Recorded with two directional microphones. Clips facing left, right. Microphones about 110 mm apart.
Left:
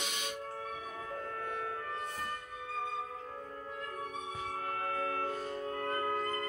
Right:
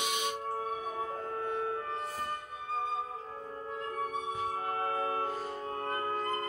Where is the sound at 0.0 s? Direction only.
15° right (ahead or behind).